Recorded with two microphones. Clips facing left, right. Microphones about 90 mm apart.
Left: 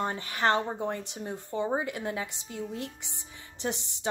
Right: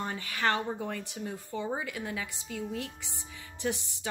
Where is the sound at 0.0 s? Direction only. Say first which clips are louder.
Left 3 dB; 25° left (ahead or behind).